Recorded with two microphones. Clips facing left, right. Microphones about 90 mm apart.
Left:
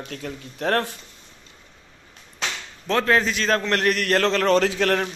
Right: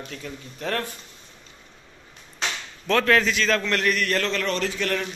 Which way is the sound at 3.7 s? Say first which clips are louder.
Left 3 dB; 55° left (ahead or behind).